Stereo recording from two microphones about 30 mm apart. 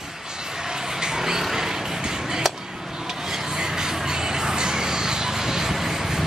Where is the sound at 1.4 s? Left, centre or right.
Centre.